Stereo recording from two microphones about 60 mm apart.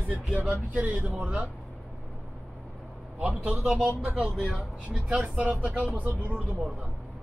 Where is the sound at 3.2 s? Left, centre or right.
Right.